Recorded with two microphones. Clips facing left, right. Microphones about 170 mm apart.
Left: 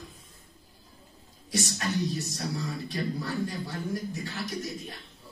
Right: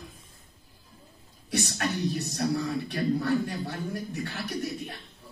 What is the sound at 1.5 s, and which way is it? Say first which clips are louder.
Speech: right 1 dB; 60° right (ahead or behind).